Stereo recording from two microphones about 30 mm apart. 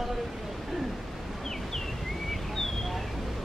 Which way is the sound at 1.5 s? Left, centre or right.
Centre.